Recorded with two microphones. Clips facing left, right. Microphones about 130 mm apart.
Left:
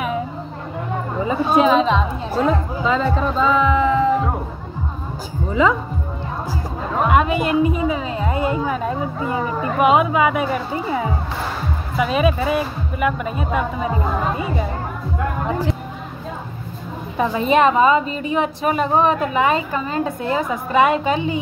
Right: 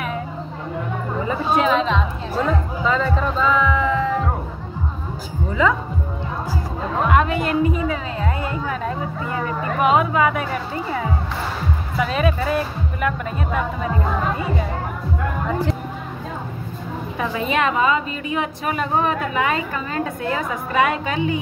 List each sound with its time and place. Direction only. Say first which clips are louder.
1.2 s speech: left 4 dB; 20° left (ahead or behind)
5.5 s a woman's voice: left 2 dB; 20° left (ahead or behind)
7.1 s a woman's voice: left 2 dB; 15° left (ahead or behind)
17.2 s a woman's voice: left 6 dB; 30° left (ahead or behind)